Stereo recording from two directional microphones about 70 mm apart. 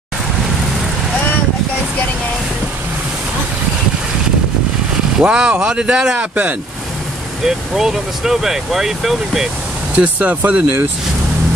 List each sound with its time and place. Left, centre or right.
5.2 s speech: centre
7.4 s speech: centre
9.9 s speech: right